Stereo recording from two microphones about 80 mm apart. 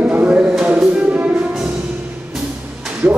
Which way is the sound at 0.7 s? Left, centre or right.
Centre.